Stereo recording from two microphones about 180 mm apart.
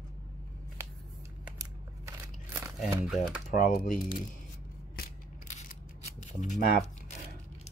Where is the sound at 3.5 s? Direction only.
45° left (ahead or behind).